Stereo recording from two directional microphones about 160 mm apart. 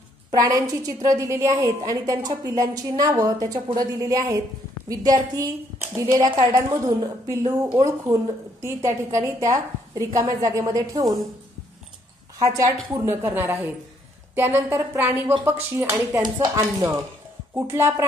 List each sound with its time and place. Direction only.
0.3 s a woman's voice: 20° right (ahead or behind)
12.4 s a woman's voice: 20° right (ahead or behind)